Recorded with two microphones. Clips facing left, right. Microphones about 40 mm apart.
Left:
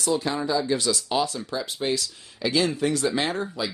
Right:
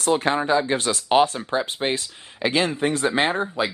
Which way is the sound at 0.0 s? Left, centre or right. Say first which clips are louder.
Right 4 dB; right.